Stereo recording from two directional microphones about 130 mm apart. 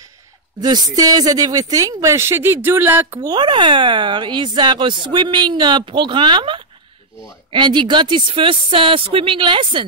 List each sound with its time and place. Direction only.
0.6 s speech: 35° right (ahead or behind); by 3.3 s 15° right (ahead or behind)
3.3 s speech: 35° right (ahead or behind)